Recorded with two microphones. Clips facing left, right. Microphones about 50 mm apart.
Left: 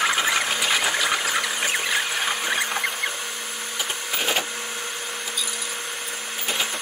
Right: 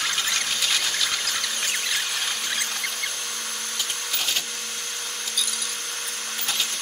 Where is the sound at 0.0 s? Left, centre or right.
Centre.